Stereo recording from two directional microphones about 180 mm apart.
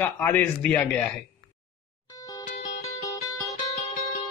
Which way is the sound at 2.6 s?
35° left (ahead or behind).